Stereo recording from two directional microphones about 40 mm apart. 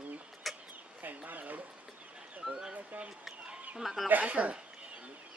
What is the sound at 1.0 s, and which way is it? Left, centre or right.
Speech, right.